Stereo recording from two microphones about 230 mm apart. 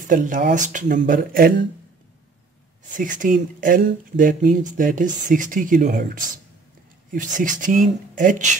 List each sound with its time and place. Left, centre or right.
0.0 s speech: right
3.0 s speech: right